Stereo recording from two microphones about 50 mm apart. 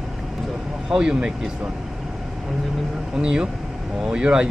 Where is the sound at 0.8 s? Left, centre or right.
Centre.